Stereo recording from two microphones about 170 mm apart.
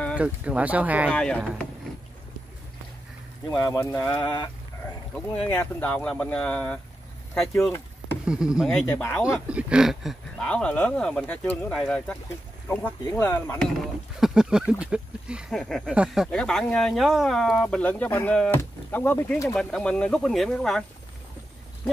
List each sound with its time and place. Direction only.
0.2 s speech: 10° right (ahead or behind)
1.1 s speech: 5° left (ahead or behind)
3.5 s speech: 15° left (ahead or behind)
5.1 s speech: 10° left (ahead or behind)
9.5 s speech: 5° right (ahead or behind); by 13.7 s 10° left (ahead or behind)
14.2 s a sound: 5° right (ahead or behind)
15.6 s speech: 5° left (ahead or behind)
16.3 s speech: 5° left (ahead or behind)